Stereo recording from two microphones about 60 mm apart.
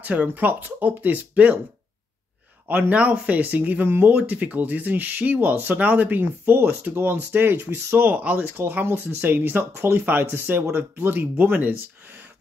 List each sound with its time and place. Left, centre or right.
0.0 s speech: right
2.9 s speech: right
4.1 s speech: right